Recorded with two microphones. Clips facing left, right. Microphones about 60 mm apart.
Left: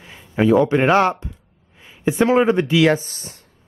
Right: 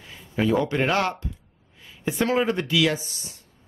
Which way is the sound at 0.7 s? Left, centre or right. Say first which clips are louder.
Left 8 dB; left.